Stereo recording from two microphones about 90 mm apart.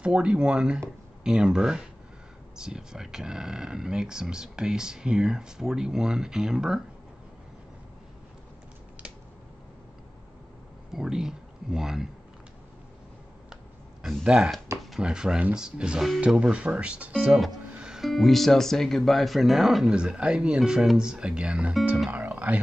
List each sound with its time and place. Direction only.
0.0 s speech: 10° right (ahead or behind)
10.9 s speech: 5° right (ahead or behind)
14.0 s speech: 10° right (ahead or behind)
22.1 s music: 15° right (ahead or behind)